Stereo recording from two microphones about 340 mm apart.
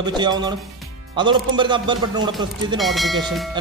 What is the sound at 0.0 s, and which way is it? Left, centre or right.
Speech, centre.